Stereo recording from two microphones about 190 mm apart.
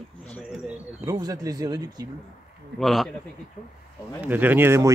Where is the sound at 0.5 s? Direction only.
5° right (ahead or behind).